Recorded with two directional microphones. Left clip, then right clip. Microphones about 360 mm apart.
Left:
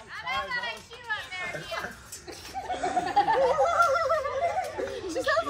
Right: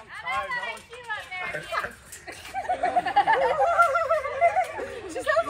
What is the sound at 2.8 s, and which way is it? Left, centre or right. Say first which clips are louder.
Laughter: right 2 dB; right.